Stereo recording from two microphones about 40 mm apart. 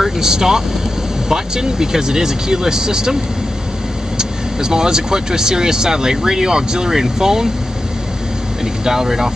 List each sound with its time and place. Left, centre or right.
0.0 s speech: centre
4.2 s speech: centre
8.8 s speech: centre